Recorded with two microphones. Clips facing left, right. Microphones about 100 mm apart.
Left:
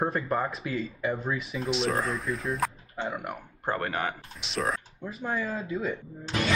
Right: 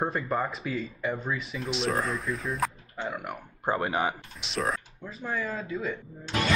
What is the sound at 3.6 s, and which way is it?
Speech, 10° right (ahead or behind).